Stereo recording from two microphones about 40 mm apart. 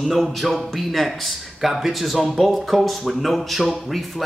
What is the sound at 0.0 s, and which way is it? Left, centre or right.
A man's voice, centre.